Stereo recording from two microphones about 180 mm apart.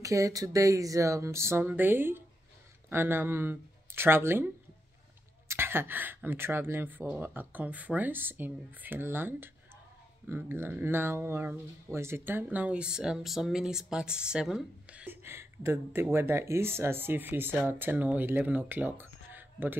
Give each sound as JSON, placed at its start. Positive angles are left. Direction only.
{"t": 0.0, "sound": "speech", "side_deg": -15}
{"t": 5.5, "sound": "speech", "side_deg": -15}